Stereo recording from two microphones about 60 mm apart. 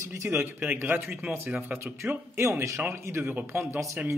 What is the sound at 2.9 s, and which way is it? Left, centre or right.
A man's voice, right.